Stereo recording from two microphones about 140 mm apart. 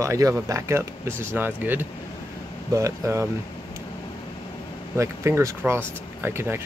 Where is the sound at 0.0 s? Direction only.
20° right (ahead or behind).